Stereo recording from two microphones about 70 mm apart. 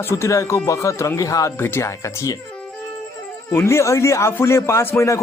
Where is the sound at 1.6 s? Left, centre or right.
Left.